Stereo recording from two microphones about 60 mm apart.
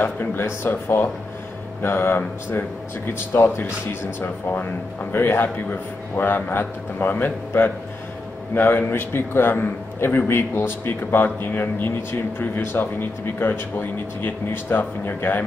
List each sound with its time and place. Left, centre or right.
0.0 s a man's voice: left